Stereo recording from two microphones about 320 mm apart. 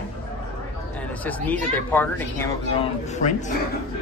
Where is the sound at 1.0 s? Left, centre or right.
Centre.